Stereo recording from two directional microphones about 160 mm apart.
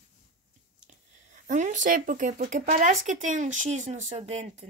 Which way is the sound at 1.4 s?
50° right (ahead or behind).